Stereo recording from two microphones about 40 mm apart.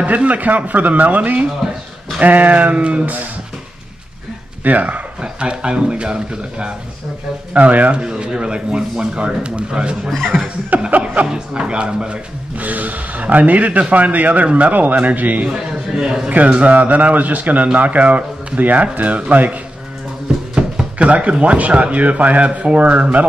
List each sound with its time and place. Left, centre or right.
0.0 s speech: right
4.6 s speech: right
5.2 s a man's voice: right
7.5 s speech: right
8.0 s a man's voice: centre
10.3 s chuckle: centre
10.9 s speech: right
11.2 s a man's voice: centre
12.5 s speech: right
15.9 s a man's voice: centre
16.3 s speech: right
20.5 s speech: right